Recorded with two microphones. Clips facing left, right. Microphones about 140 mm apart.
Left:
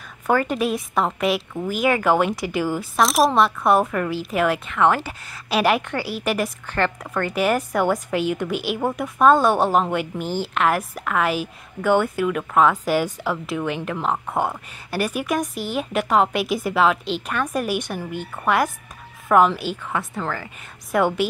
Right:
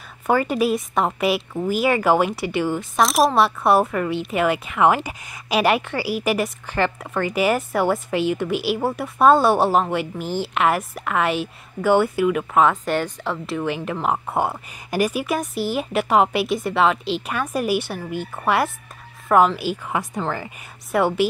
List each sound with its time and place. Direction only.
0.3 s a woman's voice: 5° right (ahead or behind)
5.6 s a woman's voice: centre (ahead or behind)
13.9 s a woman's voice: 15° right (ahead or behind)
16.4 s a woman's voice: 5° left (ahead or behind); by 20.4 s 20° right (ahead or behind)
20.9 s a woman's voice: 5° right (ahead or behind)